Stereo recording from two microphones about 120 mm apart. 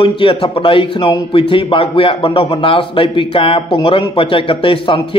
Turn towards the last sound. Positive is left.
turn(degrees=50)  # may be behind; listen again after turning